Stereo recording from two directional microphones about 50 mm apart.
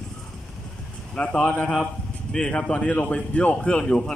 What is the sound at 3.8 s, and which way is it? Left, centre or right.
Speech, centre.